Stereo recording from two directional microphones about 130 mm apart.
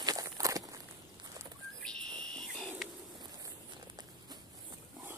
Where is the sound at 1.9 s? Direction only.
5° left (ahead or behind).